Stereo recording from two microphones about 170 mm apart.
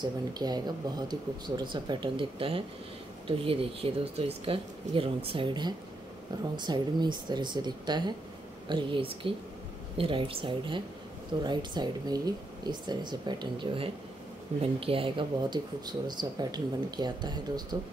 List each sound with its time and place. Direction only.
0.0 s speech: 25° right (ahead or behind)